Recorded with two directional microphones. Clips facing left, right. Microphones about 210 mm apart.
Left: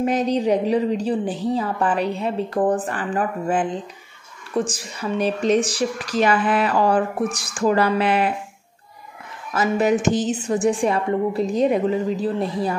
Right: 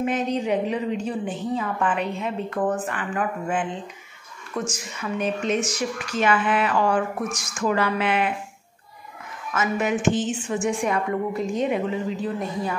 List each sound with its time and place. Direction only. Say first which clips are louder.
0.0 s speech: left 4 dB; 35° left (ahead or behind)
9.5 s speech: left 5 dB; 35° left (ahead or behind)